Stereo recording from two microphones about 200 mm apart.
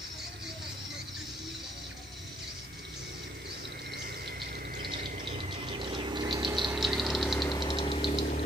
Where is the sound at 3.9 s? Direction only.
55° right (ahead or behind).